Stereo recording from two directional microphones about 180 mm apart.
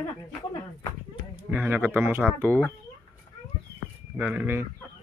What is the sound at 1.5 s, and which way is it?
Speech, 10° right (ahead or behind).